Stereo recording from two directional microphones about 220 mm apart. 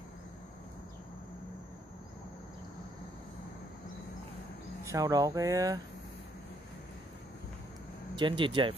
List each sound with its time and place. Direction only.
4.8 s speech: 15° right (ahead or behind)
8.2 s speech: 20° right (ahead or behind)